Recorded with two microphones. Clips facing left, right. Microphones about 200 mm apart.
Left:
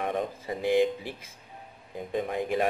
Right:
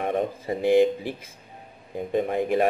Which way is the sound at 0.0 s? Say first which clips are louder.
Right 4 dB; 55° right (ahead or behind).